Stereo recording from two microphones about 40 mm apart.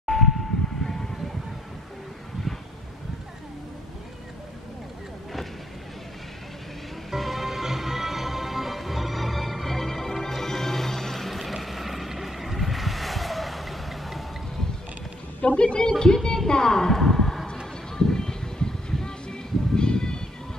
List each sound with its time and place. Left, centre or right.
0.0 s vehicle: centre
7.1 s music: centre
15.5 s a woman's voice: left
17.9 s music: centre